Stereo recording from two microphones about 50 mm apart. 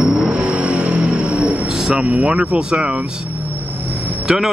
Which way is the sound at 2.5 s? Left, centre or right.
Centre.